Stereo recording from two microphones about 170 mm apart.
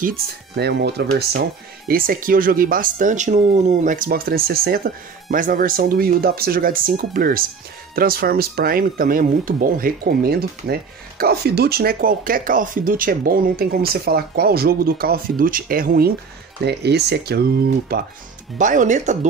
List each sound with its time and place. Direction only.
0.0 s speech: 65° right (ahead or behind)
1.9 s speech: 60° right (ahead or behind)
16.6 s speech: 75° right (ahead or behind)
18.6 s speech: 50° right (ahead or behind)